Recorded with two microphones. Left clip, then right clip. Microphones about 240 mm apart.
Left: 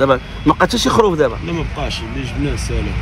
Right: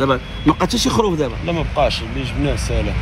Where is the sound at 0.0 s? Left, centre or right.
Centre.